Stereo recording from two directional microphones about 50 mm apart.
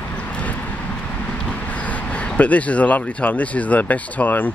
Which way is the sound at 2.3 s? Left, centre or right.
Left.